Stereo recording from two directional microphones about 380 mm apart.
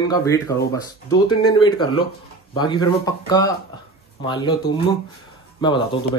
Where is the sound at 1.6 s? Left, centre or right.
Centre.